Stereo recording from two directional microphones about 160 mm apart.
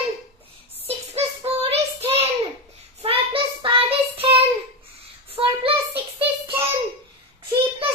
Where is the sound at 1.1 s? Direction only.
40° right (ahead or behind).